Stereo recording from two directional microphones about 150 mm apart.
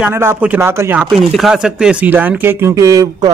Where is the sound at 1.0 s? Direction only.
Centre (ahead or behind).